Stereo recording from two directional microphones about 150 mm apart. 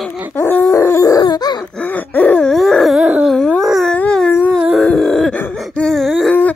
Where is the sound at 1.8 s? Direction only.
10° left (ahead or behind).